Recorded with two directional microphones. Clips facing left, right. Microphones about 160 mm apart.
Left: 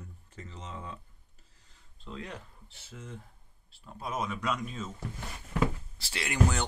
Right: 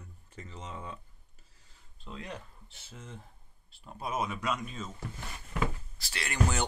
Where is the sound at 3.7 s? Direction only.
15° right (ahead or behind).